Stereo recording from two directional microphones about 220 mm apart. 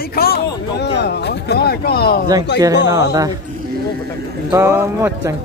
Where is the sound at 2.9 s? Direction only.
15° right (ahead or behind).